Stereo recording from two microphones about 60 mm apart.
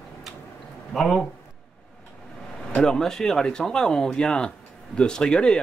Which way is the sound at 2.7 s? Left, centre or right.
Centre.